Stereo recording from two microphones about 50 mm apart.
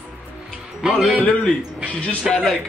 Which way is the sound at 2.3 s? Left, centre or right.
Centre.